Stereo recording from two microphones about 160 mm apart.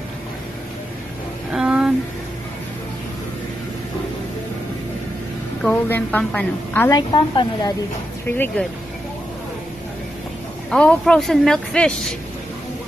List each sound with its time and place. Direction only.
1.5 s a sound: 5° right (ahead or behind)
5.6 s a woman's voice: 10° left (ahead or behind)
6.9 s a woman's voice: 25° left (ahead or behind)
8.3 s a woman's voice: 10° left (ahead or behind)
10.7 s speech: 5° left (ahead or behind)